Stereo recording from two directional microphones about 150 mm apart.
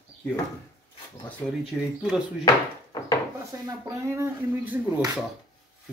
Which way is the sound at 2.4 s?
25° left (ahead or behind).